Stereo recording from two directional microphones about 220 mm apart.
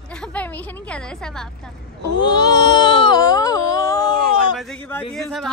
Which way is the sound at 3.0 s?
15° left (ahead or behind).